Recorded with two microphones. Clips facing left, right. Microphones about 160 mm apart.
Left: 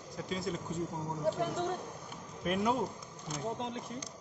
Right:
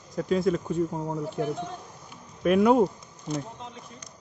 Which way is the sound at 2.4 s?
70° right (ahead or behind).